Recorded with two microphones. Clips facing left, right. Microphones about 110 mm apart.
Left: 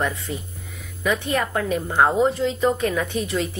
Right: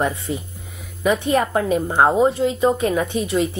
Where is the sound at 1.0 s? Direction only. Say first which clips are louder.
Right 5 dB; 25° right (ahead or behind).